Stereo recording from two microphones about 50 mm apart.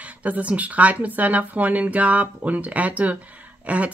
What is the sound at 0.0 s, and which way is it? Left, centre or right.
Speech, right.